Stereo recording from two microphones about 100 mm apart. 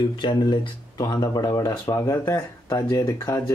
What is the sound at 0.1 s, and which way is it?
Speech, 50° left (ahead or behind).